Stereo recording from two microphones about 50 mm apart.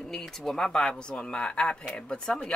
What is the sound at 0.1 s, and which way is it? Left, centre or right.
Speech, centre.